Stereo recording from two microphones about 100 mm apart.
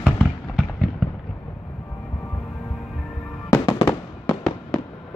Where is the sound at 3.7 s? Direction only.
25° left (ahead or behind).